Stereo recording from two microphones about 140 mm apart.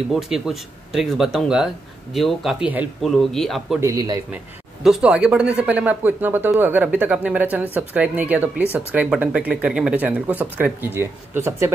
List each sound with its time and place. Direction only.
0.1 s speech: centre (ahead or behind)
3.8 s a man's voice: 25° right (ahead or behind)
4.8 s speech: 5° right (ahead or behind)